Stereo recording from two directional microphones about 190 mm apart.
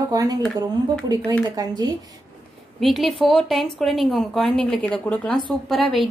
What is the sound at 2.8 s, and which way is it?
Speech, centre (ahead or behind).